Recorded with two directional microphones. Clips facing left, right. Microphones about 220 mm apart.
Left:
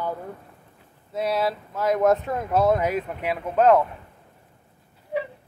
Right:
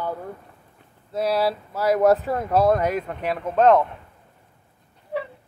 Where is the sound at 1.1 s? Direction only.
Centre (ahead or behind).